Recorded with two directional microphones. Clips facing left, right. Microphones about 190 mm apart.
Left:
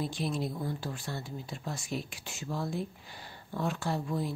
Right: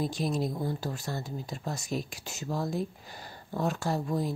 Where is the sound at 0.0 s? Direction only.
40° right (ahead or behind).